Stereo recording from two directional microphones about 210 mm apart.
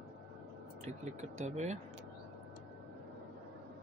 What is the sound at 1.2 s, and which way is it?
Speech, 35° right (ahead or behind).